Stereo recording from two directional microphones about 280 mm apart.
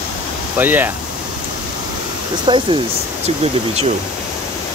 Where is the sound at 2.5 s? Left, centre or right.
Centre.